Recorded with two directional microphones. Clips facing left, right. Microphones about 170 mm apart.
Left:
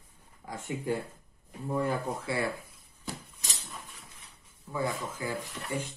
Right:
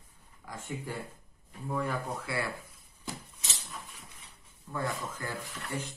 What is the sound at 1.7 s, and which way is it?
Speech, 25° left (ahead or behind).